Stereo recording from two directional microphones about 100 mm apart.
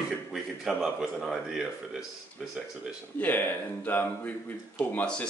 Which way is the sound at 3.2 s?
20° left (ahead or behind).